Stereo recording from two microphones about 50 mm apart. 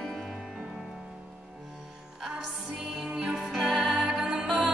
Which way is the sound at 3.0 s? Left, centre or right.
Centre.